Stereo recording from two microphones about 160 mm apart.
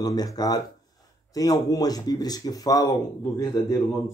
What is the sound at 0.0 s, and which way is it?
Speech, 25° left (ahead or behind).